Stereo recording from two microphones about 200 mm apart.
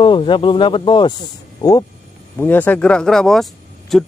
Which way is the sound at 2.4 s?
10° left (ahead or behind).